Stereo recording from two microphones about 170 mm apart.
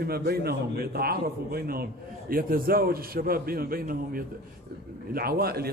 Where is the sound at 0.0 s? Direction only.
65° right (ahead or behind).